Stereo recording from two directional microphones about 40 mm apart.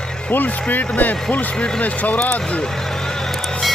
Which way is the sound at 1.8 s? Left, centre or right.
Left.